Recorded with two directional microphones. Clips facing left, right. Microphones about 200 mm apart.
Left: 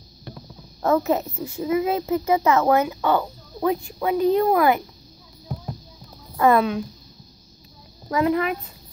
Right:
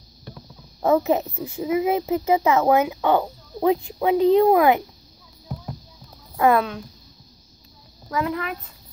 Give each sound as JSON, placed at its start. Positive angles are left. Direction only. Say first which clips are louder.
{"t": 0.8, "sound": "speech", "louder": "right 1 dB", "side_deg": -15}
{"t": 6.3, "sound": "speech", "louder": "left 1 dB", "side_deg": -10}
{"t": 8.1, "sound": "a child's voice", "louder": "left 5 dB", "side_deg": 20}